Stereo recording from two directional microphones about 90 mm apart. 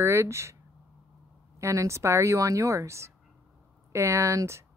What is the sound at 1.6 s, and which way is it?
Speech, 35° right (ahead or behind).